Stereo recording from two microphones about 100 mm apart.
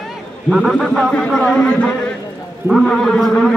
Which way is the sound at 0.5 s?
Centre (ahead or behind).